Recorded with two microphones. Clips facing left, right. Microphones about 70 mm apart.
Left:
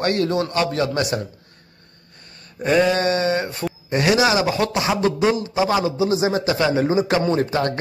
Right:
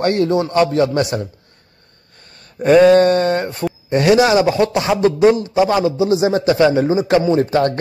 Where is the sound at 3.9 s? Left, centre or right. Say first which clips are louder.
Right 5 dB; right.